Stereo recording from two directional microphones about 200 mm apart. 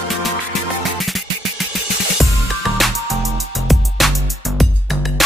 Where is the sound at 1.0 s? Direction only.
Centre (ahead or behind).